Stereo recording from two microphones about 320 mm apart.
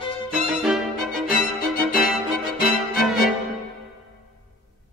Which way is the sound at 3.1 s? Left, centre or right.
Centre.